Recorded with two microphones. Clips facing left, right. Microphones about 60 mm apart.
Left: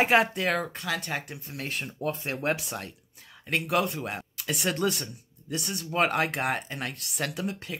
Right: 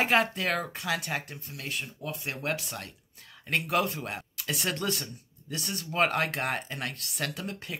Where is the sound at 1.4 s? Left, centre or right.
Left.